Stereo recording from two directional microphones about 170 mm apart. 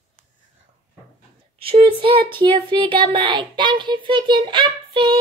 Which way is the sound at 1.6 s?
30° right (ahead or behind).